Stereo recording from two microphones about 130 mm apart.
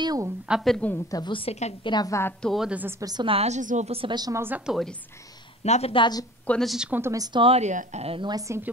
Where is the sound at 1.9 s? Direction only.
30° left (ahead or behind).